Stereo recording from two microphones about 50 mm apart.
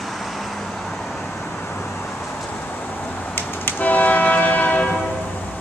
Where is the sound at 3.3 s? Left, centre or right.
Left.